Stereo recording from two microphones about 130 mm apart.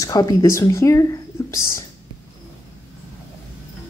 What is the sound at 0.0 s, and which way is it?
Speech, 25° left (ahead or behind).